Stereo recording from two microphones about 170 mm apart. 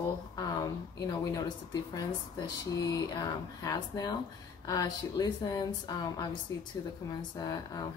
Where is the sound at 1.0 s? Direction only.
20° left (ahead or behind).